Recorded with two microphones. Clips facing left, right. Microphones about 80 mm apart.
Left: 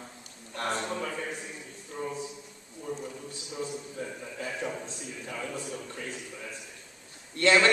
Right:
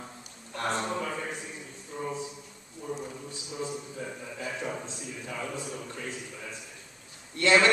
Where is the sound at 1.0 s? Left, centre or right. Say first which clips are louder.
Even; centre.